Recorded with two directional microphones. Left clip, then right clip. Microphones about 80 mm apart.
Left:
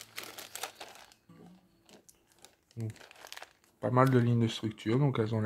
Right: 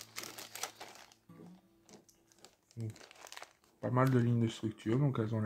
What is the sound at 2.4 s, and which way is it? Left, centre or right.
Crumpling, left.